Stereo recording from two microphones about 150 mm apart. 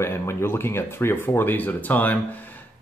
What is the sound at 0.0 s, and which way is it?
Speech, 15° left (ahead or behind).